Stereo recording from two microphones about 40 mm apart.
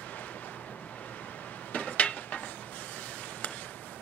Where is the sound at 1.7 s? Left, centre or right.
Left.